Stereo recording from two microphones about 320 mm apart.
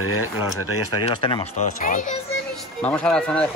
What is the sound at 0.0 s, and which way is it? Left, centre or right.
Speech, left.